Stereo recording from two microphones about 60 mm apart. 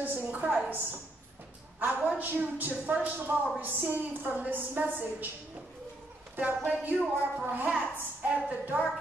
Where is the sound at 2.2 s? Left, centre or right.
Right.